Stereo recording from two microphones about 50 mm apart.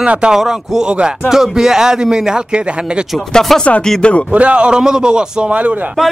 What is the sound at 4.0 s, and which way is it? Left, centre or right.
Speech, left.